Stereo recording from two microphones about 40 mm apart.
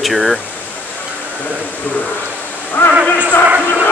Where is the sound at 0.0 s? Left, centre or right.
Centre.